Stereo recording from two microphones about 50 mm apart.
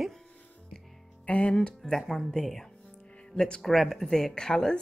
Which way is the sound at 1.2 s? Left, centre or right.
Left.